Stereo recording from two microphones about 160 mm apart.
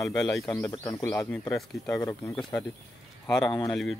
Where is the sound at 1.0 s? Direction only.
10° left (ahead or behind).